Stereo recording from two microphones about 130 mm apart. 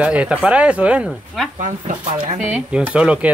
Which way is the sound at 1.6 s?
80° right.